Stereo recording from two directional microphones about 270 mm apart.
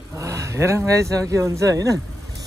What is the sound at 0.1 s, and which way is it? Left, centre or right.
Speech, centre.